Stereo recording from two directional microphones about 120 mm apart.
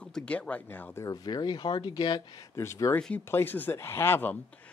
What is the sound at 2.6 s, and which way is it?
Speech, 25° left (ahead or behind).